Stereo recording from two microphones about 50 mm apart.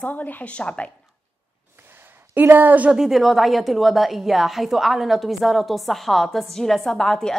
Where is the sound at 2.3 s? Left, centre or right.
Right.